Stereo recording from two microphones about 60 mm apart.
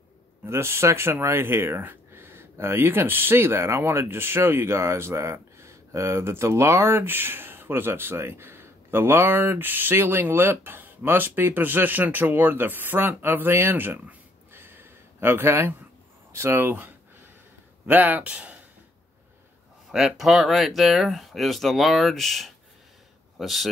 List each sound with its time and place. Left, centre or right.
0.5 s speech: right
16.7 s a sound: right
17.8 s speech: right
19.9 s speech: centre